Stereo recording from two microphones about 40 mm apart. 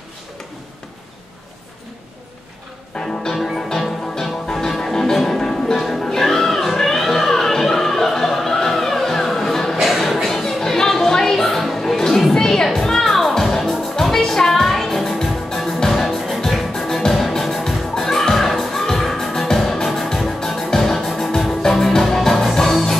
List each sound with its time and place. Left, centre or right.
2.9 s music: centre
9.8 s a sound: centre
10.2 s music: centre
15.9 s music: centre
16.3 s music: centre